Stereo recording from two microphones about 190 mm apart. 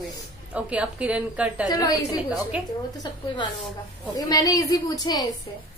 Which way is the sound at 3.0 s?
20° left (ahead or behind).